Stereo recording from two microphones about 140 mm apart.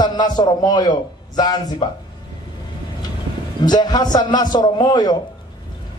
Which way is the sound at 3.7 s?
30° left (ahead or behind).